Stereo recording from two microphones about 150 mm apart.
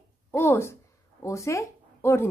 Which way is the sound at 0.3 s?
15° left (ahead or behind).